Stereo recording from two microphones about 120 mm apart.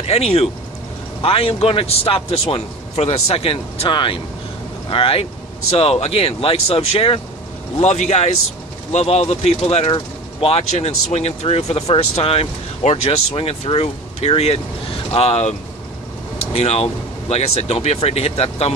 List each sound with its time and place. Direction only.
0.0 s a man's voice: 60° left (ahead or behind)
7.8 s speech: 70° left (ahead or behind)
9.8 s speech: 50° left (ahead or behind)
16.5 s speech: 60° left (ahead or behind)